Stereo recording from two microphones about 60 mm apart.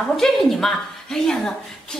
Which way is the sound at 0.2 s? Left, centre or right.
Centre.